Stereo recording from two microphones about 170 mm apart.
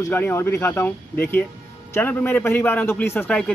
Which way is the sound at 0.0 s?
15° left (ahead or behind).